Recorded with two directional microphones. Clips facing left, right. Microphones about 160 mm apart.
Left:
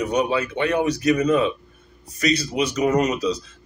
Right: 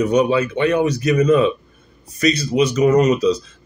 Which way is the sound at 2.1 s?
25° right (ahead or behind).